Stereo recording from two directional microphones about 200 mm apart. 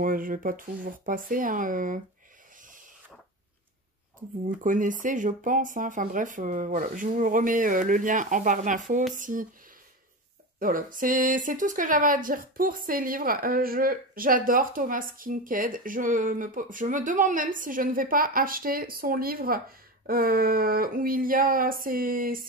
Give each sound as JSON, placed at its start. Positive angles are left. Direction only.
{"t": 0.0, "sound": "speech", "side_deg": -45}
{"t": 4.6, "sound": "speech", "side_deg": -40}
{"t": 10.6, "sound": "speech", "side_deg": -45}